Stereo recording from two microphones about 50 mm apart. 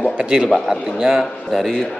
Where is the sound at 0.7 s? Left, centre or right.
Centre.